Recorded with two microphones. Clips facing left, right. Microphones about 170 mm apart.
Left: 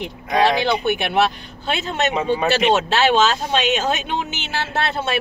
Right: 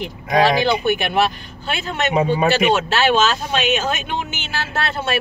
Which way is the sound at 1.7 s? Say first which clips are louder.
Even; 25° left (ahead or behind).